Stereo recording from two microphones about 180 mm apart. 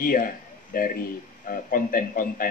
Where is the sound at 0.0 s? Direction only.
50° left (ahead or behind).